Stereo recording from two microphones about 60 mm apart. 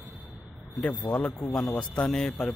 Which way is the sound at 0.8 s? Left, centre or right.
Left.